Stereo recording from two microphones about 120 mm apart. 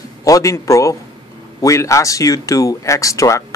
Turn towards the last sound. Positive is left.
turn(degrees=25)  # may be behind; listen again after turning